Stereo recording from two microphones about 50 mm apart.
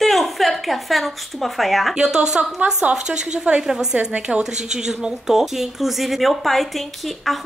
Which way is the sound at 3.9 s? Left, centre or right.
Right.